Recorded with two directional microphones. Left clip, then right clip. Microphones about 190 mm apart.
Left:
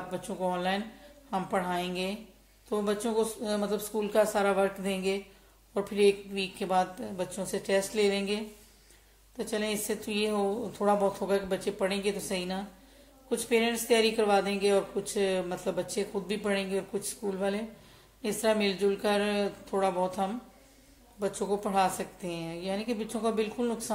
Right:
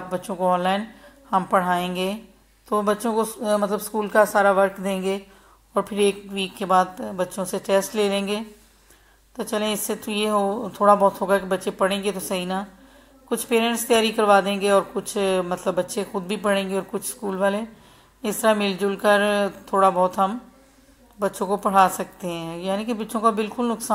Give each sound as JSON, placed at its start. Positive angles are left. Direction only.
{"t": 0.1, "sound": "a woman's voice", "side_deg": -15}